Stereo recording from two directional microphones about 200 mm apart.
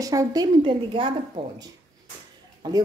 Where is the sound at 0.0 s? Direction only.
15° right (ahead or behind).